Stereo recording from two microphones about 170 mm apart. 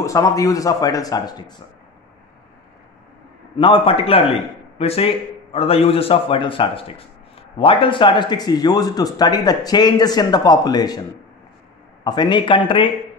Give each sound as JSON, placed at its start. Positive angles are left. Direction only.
{"t": 0.0, "sound": "speech", "side_deg": 20}
{"t": 3.5, "sound": "a man's voice", "side_deg": 30}
{"t": 12.0, "sound": "speech", "side_deg": 25}